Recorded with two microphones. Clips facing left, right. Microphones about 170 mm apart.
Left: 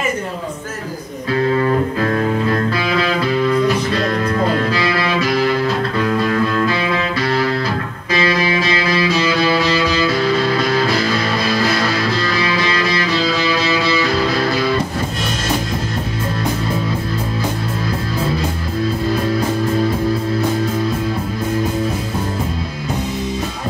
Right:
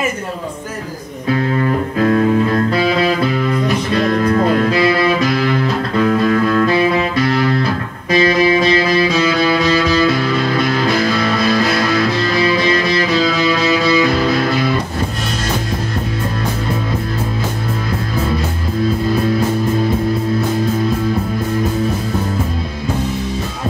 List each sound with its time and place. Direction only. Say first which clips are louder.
8.2 s music: right 5 dB; 30° right (ahead or behind)